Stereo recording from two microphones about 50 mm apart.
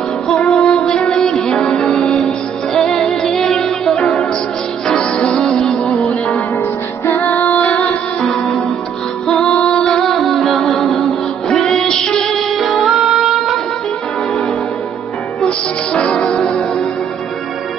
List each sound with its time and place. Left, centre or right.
0.4 s music: centre
0.8 s music: centre
4.8 s music: centre
7.4 s music: left
7.7 s music: left
8.2 s music: centre
9.7 s music: centre
12.1 s female singing: centre
15.4 s music: left